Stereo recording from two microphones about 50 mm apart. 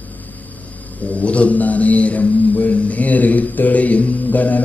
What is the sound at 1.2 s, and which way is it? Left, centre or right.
Mantra, left.